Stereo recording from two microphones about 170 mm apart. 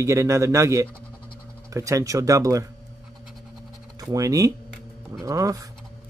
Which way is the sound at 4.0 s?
20° right (ahead or behind).